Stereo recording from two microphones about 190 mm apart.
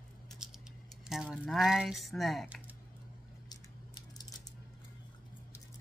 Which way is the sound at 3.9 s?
20° left (ahead or behind).